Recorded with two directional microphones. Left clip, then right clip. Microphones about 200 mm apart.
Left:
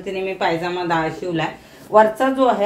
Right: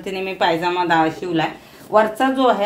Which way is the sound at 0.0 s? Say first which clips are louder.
Right 1 dB; 45° right (ahead or behind).